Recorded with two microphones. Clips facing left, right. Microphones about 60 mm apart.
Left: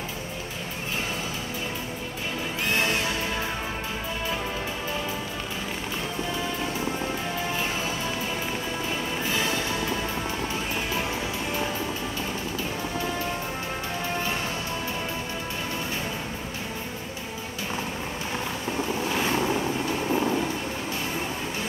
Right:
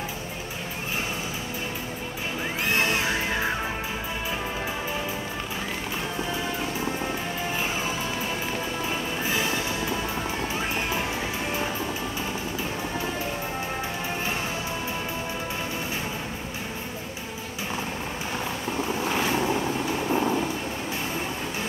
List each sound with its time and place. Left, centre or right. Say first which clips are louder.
19.1 s vehicle: even; centre